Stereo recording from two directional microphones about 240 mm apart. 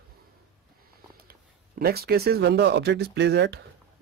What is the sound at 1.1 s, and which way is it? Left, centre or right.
Speech, right.